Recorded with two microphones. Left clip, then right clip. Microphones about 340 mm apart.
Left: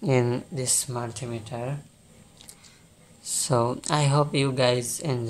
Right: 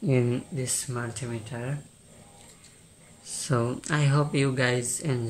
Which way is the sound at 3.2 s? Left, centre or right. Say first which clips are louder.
Left 5 dB; centre.